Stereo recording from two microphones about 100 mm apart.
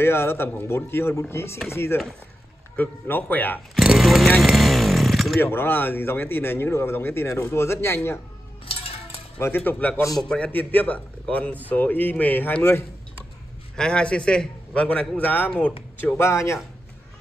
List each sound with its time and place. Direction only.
0.0 s a man's voice: 25° left (ahead or behind)
3.7 s chainsaw: 5° right (ahead or behind)
5.4 s speech: 20° left (ahead or behind)
9.7 s a man's voice: 20° left (ahead or behind)
13.7 s a man's voice: 10° left (ahead or behind); by 16.5 s 30° left (ahead or behind)